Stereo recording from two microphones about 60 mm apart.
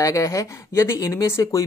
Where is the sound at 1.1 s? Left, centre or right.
Left.